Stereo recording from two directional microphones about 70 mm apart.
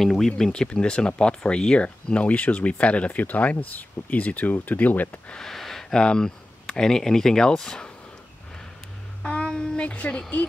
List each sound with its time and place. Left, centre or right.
0.0 s speech: centre; by 5.2 s left
5.3 s speech: centre
9.2 s a child's voice: centre